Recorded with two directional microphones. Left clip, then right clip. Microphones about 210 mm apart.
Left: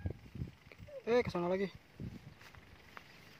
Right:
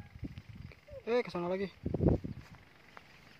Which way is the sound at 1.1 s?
5° left (ahead or behind).